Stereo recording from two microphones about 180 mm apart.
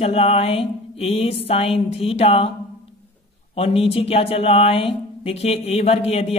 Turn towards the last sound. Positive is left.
turn(degrees=35)  # may be behind; listen again after turning